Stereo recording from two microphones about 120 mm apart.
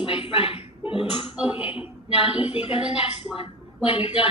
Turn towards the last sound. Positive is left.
turn(degrees=50)  # may be behind; listen again after turning